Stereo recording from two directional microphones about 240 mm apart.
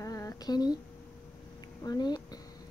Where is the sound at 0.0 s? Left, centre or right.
Centre.